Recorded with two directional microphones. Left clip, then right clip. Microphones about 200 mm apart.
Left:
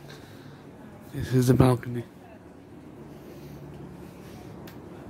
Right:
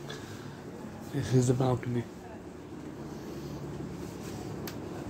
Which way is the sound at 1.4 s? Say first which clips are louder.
Left 11 dB; 35° left (ahead or behind).